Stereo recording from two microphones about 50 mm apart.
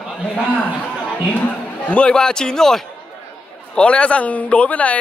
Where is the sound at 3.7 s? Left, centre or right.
Left.